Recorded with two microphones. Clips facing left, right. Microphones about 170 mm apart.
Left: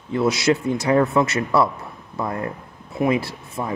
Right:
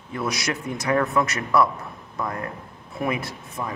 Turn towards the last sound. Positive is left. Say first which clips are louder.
# left 3 dB
turn(degrees=25)  # may be behind; listen again after turning